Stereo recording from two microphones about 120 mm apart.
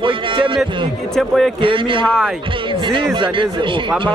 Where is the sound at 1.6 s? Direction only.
45° right (ahead or behind).